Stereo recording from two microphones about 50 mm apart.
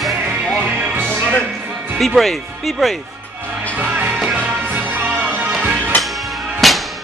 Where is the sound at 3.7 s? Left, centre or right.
Right.